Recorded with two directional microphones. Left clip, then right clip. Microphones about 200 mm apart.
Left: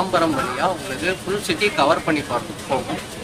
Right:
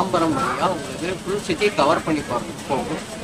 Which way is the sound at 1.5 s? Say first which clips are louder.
Left 1 dB; 5° right (ahead or behind).